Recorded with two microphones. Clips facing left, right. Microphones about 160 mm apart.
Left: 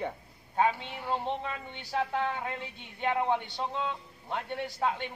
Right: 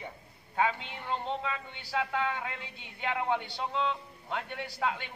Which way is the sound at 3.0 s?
20° left (ahead or behind).